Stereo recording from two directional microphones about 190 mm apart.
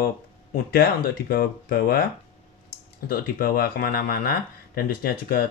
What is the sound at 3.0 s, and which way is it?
Speech, 50° left (ahead or behind).